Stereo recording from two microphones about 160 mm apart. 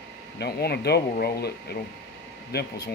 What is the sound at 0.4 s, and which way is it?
Speech, 80° left.